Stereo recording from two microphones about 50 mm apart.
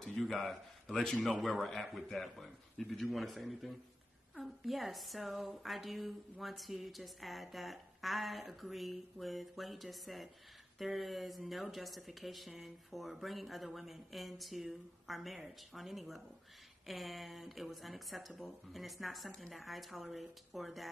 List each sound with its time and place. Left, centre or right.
0.0 s a man's voice: centre